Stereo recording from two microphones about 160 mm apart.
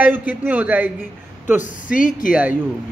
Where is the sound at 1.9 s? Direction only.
55° left (ahead or behind).